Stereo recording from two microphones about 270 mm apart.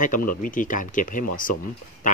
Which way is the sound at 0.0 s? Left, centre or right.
Left.